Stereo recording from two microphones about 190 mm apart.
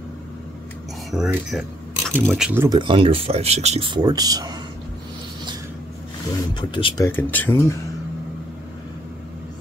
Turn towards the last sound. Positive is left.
turn(degrees=15)  # may be behind; listen again after turning